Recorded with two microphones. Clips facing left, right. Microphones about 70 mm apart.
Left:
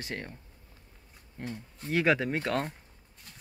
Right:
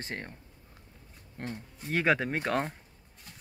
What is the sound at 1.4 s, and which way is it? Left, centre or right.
Speech, right.